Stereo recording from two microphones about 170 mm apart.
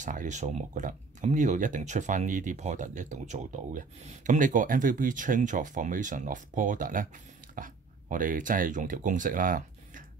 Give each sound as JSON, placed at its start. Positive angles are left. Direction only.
{"t": 0.0, "sound": "speech", "side_deg": -45}